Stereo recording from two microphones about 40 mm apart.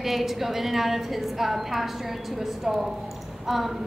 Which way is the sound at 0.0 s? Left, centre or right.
Centre.